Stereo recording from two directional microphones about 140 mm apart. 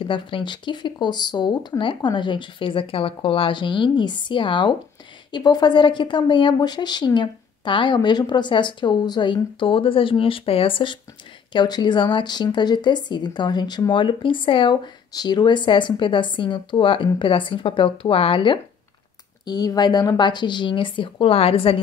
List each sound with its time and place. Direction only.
0.0 s a woman's voice: 35° left (ahead or behind)